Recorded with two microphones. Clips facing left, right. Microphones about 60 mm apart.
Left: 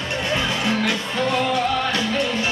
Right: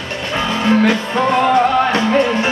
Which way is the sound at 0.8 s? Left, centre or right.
Right.